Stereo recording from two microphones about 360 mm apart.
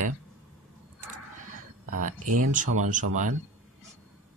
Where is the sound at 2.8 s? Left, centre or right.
Right.